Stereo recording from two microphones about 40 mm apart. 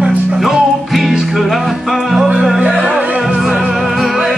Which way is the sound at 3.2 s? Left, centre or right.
Centre.